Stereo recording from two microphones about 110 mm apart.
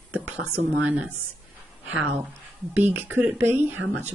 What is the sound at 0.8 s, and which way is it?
Speech, 10° right (ahead or behind).